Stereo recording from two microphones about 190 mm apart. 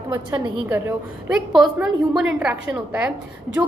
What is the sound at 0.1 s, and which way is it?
A woman's voice, 10° right (ahead or behind).